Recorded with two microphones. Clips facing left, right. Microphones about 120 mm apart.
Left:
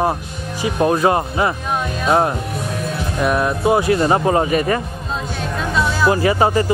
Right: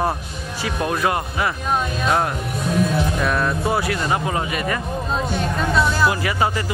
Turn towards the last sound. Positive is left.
turn(degrees=30)  # may be behind; listen again after turning